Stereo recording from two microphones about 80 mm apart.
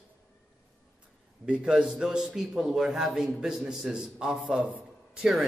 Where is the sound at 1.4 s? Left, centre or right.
Centre.